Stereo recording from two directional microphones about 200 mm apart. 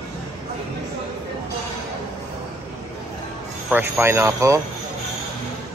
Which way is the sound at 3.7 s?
10° right (ahead or behind).